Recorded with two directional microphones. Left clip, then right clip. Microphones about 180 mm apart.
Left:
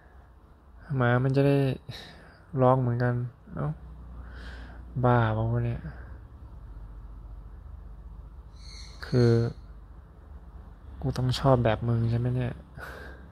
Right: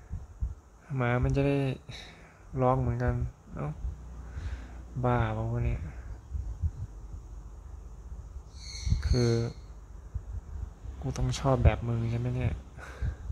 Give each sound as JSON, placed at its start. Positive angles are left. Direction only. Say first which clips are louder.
{"t": 0.8, "sound": "speech", "louder": "left 4 dB", "side_deg": 15}
{"t": 5.0, "sound": "speech", "louder": "left 5 dB", "side_deg": 20}
{"t": 9.0, "sound": "speech", "louder": "left 5 dB", "side_deg": 15}
{"t": 11.1, "sound": "speech", "louder": "left 5 dB", "side_deg": 20}